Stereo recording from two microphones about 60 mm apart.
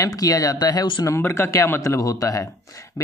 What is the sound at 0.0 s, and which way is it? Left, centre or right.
Speech, left.